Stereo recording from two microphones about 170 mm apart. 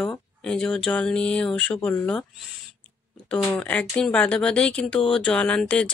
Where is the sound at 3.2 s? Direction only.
5° left (ahead or behind).